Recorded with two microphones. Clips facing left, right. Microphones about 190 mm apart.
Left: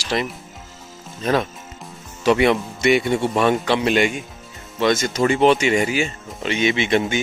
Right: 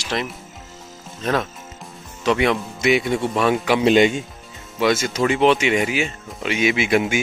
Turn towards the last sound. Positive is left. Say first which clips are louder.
# even
turn(degrees=-5)  # may be behind; listen again after turning